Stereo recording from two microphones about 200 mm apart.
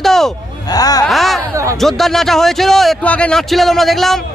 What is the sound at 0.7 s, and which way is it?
Speech, 20° left (ahead or behind).